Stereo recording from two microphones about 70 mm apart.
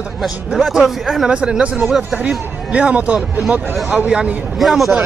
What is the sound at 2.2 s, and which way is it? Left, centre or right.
Speech, centre.